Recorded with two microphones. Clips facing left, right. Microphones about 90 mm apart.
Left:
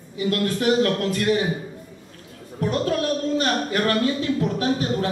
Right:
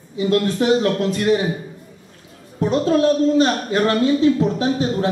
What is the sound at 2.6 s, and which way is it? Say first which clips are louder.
A woman's voice: right 6 dB; 25° right (ahead or behind).